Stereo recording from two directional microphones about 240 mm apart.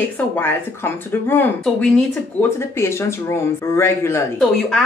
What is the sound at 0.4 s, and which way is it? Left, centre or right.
A woman's voice, centre.